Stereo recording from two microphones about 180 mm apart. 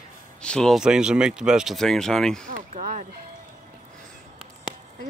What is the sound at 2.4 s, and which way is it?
Speech, 50° right (ahead or behind).